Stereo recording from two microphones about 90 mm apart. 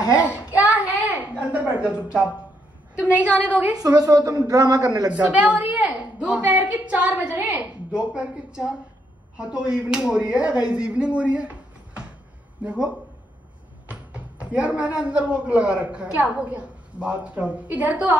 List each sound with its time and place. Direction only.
0.6 s a sound: 15° right (ahead or behind)
3.0 s a woman's voice: 15° right (ahead or behind)
3.8 s a woman's voice: 45° right (ahead or behind)
5.1 s a woman's voice: 15° right (ahead or behind)